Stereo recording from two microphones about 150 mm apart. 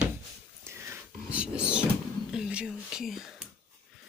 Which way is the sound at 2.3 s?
5° right (ahead or behind).